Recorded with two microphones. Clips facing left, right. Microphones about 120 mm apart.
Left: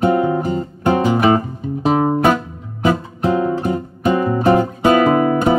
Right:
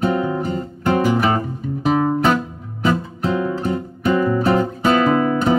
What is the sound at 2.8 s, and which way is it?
Guitar, 20° left (ahead or behind).